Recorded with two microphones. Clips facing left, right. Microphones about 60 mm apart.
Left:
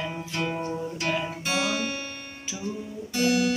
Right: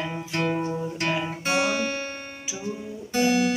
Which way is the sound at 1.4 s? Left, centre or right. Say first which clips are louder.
Right 3 dB; right.